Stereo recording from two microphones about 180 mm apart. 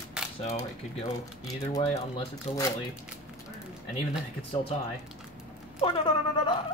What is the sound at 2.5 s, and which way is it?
Speech, 35° left (ahead or behind).